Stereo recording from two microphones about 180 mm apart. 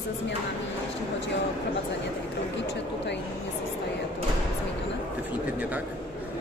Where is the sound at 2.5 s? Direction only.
75° left (ahead or behind).